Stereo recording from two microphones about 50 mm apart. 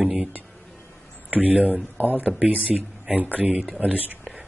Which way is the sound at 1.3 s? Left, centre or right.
Right.